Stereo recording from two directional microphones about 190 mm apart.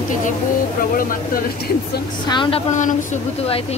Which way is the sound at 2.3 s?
25° left (ahead or behind).